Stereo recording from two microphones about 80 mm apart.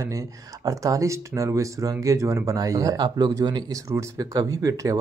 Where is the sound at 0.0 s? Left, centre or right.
Right.